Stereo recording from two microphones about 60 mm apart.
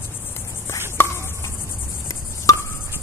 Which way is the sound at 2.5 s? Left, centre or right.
Left.